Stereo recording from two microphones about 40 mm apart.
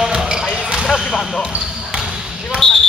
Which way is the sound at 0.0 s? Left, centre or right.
Centre.